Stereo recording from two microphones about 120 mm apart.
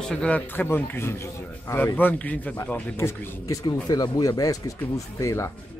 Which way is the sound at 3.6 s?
35° left (ahead or behind).